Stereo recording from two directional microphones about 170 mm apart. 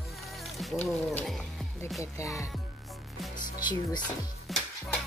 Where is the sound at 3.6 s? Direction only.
25° left (ahead or behind).